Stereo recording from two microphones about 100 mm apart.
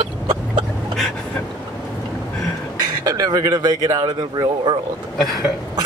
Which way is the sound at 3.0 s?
40° right (ahead or behind).